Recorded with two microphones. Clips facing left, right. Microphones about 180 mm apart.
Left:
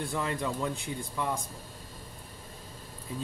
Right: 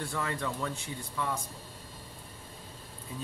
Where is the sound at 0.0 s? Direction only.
15° left (ahead or behind).